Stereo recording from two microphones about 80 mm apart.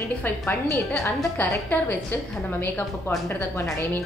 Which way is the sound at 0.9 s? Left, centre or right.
Centre.